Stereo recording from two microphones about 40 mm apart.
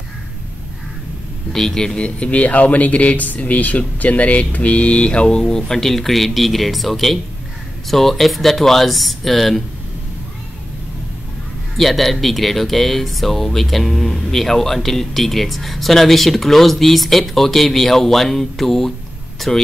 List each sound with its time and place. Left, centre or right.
1.5 s a man's voice: centre
2.0 s speech: left
5.7 s speech: centre
11.7 s a man's voice: centre